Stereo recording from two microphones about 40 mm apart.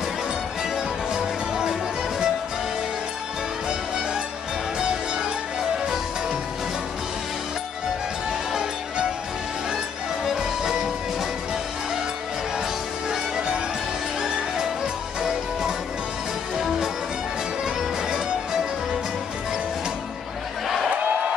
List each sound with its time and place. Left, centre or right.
1.1 s music: centre
4.7 s music: right
10.2 s music: centre